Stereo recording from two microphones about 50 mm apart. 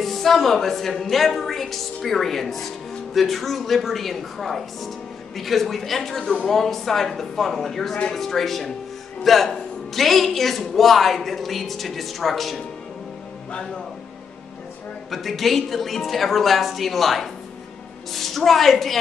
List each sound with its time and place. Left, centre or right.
0.0 s speech: centre
13.5 s speech: centre
15.0 s speech: centre